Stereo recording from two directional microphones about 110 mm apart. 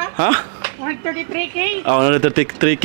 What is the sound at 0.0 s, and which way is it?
Speech, 20° right (ahead or behind).